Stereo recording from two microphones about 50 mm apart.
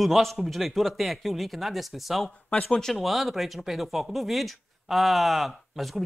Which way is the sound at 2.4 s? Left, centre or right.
Left.